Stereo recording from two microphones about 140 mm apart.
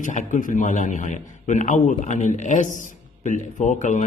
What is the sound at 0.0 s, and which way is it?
Mantra, 65° left (ahead or behind).